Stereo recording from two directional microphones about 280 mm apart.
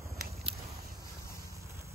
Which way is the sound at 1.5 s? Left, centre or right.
Centre.